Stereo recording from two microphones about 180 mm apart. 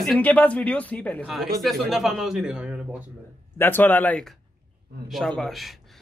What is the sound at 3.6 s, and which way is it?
Speech, 10° left (ahead or behind).